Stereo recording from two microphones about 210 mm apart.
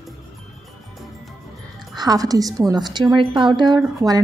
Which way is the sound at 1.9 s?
20° right (ahead or behind).